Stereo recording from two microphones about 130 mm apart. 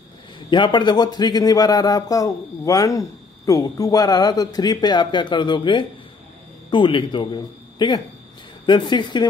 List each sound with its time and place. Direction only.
0.5 s a man's voice: 35° left (ahead or behind)